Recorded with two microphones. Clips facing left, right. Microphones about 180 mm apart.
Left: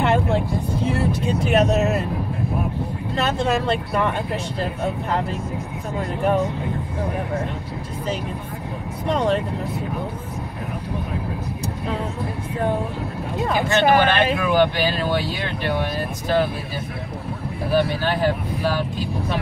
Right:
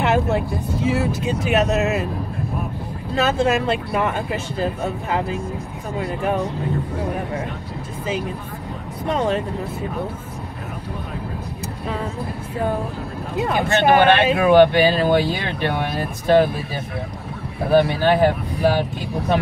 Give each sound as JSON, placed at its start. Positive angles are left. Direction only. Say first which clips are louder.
{"t": 0.0, "sound": "vehicle", "louder": "right 1 dB", "side_deg": -5}
{"t": 0.8, "sound": "speech", "louder": "right 2 dB", "side_deg": -5}
{"t": 3.2, "sound": "speech", "louder": "right 3 dB", "side_deg": -5}
{"t": 9.1, "sound": "speech", "louder": "even", "side_deg": -5}
{"t": 13.8, "sound": "speech", "louder": "right 4 dB", "side_deg": -55}
{"t": 17.6, "sound": "speech", "louder": "right 5 dB", "side_deg": -55}